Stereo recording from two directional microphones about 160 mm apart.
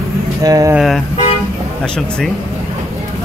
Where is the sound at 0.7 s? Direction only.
Centre (ahead or behind).